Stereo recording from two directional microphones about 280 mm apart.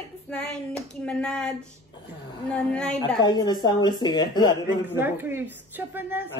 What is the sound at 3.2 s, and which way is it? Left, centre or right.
A man's voice, centre.